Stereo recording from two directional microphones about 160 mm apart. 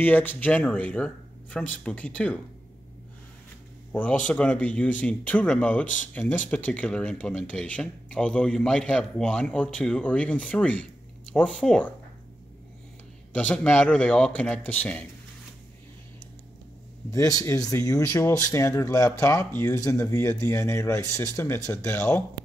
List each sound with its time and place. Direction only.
0.0 s speech: 10° left (ahead or behind)
3.9 s speech: 10° left (ahead or behind)
13.3 s speech: 10° left (ahead or behind)
17.1 s speech: 20° left (ahead or behind)